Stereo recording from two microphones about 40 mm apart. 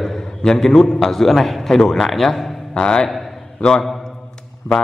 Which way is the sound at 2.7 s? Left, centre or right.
Centre.